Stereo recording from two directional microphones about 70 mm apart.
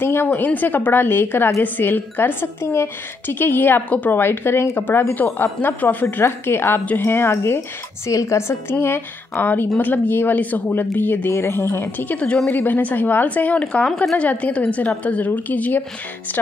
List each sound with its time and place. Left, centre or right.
0.0 s a woman's voice: left
6.0 s a woman's voice: left
8.1 s a woman's voice: left
11.3 s a woman's voice: left